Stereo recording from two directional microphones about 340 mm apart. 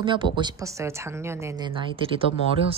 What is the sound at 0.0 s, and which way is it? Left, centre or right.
Speech, centre.